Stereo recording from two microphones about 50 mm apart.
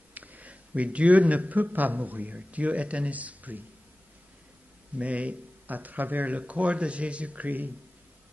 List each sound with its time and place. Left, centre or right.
0.1 s a man's voice: right
4.9 s speech: right